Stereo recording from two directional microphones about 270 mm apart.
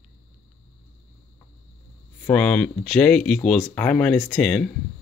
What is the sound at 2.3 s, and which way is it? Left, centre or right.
Speech, centre.